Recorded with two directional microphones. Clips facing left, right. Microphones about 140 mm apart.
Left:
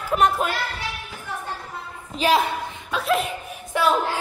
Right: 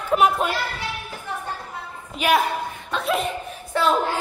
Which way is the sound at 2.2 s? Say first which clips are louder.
Even; 25° left (ahead or behind).